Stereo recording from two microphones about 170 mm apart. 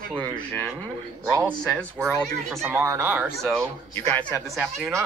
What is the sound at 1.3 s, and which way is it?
Speech, 15° right (ahead or behind).